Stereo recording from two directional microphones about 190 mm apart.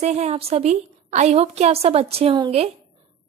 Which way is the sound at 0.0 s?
35° right (ahead or behind).